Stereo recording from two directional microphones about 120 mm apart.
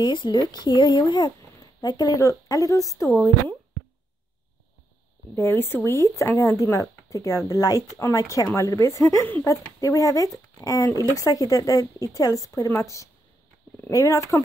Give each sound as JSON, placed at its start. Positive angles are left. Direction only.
{"t": 0.0, "sound": "speech", "side_deg": 40}
{"t": 5.3, "sound": "speech", "side_deg": 20}